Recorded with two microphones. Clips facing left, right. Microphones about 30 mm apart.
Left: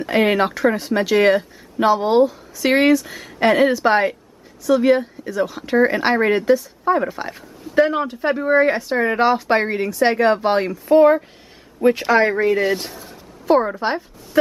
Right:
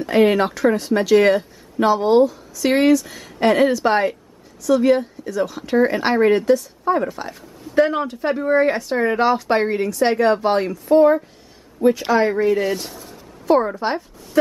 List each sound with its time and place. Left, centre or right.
0.0 s speech: centre
11.0 s speech: left
11.8 s speech: left
12.4 s speech: left